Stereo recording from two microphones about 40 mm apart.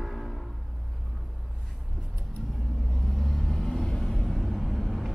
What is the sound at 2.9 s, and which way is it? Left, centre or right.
Vehicle, centre.